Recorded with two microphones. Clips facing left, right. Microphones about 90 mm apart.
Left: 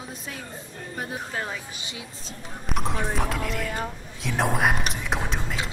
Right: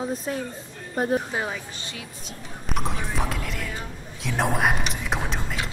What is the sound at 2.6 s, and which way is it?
Speech, centre (ahead or behind).